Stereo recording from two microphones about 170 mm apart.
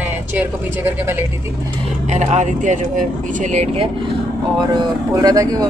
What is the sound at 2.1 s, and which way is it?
Speech, 45° right (ahead or behind).